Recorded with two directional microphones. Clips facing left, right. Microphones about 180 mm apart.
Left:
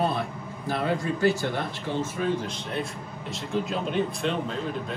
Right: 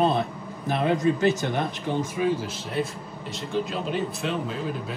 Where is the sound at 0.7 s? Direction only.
20° right (ahead or behind).